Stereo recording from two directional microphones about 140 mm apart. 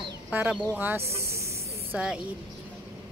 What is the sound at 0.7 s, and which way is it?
Snake, 15° right (ahead or behind).